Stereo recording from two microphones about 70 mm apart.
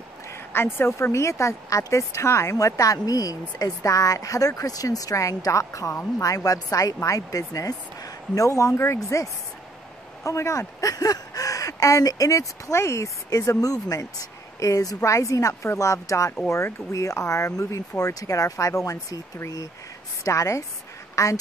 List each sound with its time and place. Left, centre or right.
0.3 s speech: left
2.5 s speech: left
21.1 s a sound: left